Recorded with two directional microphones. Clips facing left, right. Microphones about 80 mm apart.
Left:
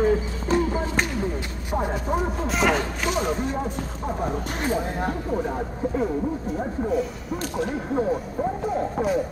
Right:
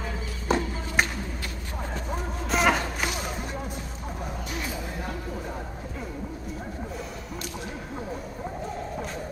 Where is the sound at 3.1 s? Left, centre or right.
Left.